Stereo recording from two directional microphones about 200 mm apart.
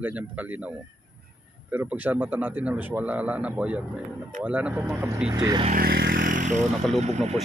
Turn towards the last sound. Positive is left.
turn(degrees=-35)  # may be behind; listen again after turning